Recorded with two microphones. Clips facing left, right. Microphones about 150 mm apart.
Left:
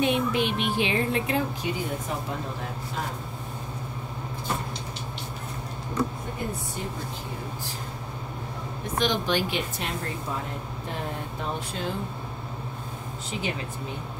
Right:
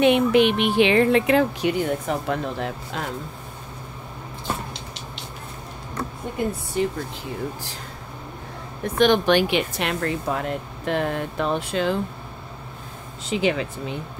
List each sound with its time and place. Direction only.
0.0 s speech: 75° right (ahead or behind)
6.8 s speech: 90° right
8.8 s speech: 60° right (ahead or behind); by 12.0 s 85° right
13.3 s speech: 90° right